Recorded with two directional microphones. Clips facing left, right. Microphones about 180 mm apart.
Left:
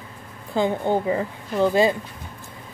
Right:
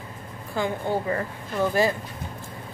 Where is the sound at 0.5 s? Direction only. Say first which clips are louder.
Left 5 dB; 20° left (ahead or behind).